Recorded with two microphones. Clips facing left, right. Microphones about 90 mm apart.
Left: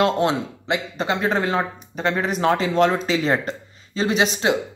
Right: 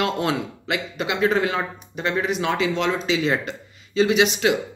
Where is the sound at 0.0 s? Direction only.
30° left (ahead or behind).